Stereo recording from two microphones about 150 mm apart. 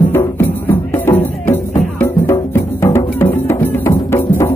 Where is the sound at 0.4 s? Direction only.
15° left (ahead or behind).